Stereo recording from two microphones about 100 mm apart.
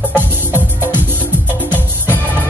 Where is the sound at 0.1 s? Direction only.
20° right (ahead or behind).